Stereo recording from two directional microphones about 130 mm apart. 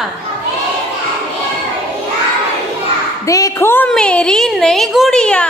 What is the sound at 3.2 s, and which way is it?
A woman's voice, 25° left (ahead or behind).